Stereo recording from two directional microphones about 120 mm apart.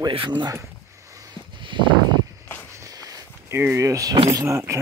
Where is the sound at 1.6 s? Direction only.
45° right (ahead or behind).